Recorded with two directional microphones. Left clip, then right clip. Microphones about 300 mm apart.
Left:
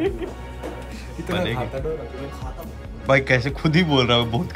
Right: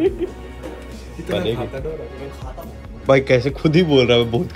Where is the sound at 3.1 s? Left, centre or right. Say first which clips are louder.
Right 4 dB; centre.